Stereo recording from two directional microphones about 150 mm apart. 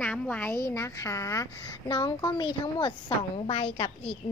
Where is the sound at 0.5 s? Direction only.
20° left (ahead or behind).